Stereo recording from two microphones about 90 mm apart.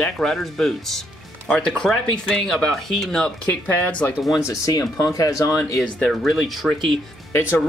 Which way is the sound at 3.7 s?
20° left (ahead or behind).